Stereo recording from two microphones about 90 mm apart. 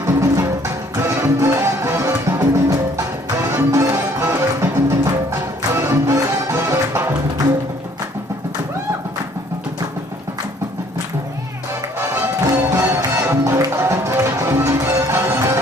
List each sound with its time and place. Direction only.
0.0 s music: 35° right (ahead or behind)
12.7 s music: 35° right (ahead or behind)